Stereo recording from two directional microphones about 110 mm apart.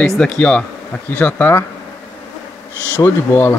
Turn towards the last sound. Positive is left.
turn(degrees=20)  # may be behind; listen again after turning